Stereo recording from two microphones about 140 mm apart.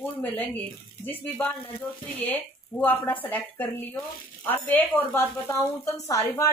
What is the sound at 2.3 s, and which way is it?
A woman's voice, 10° left (ahead or behind).